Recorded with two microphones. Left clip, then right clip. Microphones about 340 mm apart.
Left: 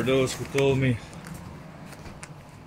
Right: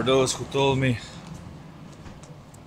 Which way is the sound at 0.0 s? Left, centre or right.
Right.